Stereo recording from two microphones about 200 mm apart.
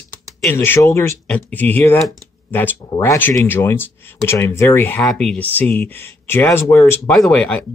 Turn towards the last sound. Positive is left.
turn(degrees=5)  # may be behind; listen again after turning